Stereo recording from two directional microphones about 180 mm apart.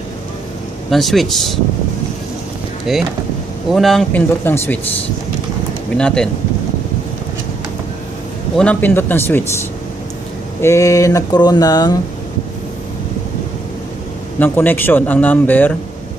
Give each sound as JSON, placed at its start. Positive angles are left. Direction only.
{"t": 0.8, "sound": "speech", "side_deg": 0}
{"t": 2.9, "sound": "speech", "side_deg": 0}
{"t": 5.9, "sound": "speech", "side_deg": 5}
{"t": 8.5, "sound": "speech", "side_deg": 10}
{"t": 14.4, "sound": "speech", "side_deg": 10}